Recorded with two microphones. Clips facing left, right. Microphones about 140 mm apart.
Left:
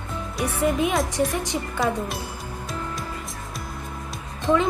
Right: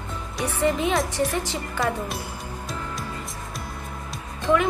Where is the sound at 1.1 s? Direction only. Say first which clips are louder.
Left 1 dB; 15° left (ahead or behind).